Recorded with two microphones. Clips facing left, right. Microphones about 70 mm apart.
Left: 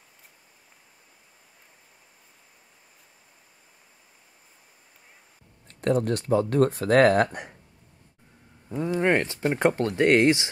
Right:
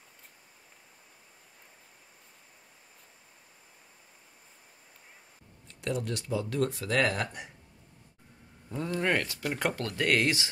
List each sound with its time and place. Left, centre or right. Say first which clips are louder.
5.7 s speech: left 9 dB; left
8.6 s speech: left 6 dB; centre